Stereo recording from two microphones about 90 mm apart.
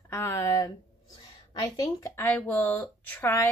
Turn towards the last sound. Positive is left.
turn(degrees=20)  # may be behind; listen again after turning